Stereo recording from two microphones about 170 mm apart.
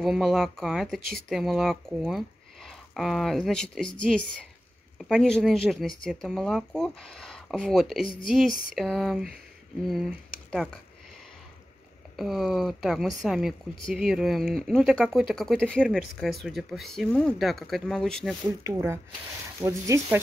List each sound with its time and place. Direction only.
0.0 s speech: centre (ahead or behind)
4.9 s speech: 5° left (ahead or behind)
12.2 s speech: centre (ahead or behind)
18.6 s speech: 15° right (ahead or behind)